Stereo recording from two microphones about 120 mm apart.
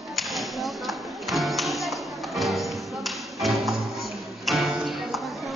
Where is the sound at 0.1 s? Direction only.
Centre (ahead or behind).